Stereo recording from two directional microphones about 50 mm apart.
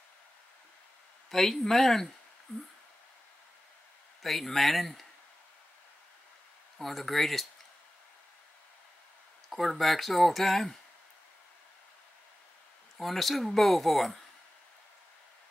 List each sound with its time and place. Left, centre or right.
1.3 s speech: centre
2.5 s speech: left
4.2 s speech: centre
6.8 s speech: centre
9.5 s speech: centre
12.9 s speech: centre